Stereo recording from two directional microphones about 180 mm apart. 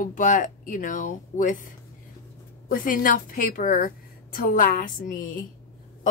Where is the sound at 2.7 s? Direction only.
50° left (ahead or behind).